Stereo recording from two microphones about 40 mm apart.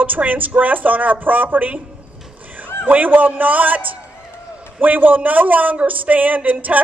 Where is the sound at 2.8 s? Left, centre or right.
Right.